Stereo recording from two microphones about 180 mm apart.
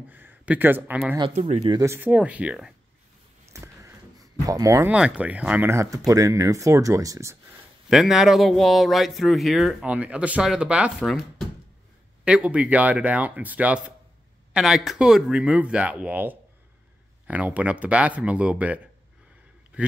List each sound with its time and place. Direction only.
0.1 s speech: 10° right (ahead or behind)
1.3 s speech: 35° right (ahead or behind)
1.8 s speech: 10° right (ahead or behind)
3.5 s a sound: 15° right (ahead or behind)
4.9 s speech: 5° right (ahead or behind)
7.9 s speech: centre (ahead or behind)